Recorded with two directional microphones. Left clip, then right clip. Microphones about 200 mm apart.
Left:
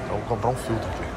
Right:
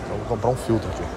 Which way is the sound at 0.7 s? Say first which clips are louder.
Right 5 dB; 20° right (ahead or behind).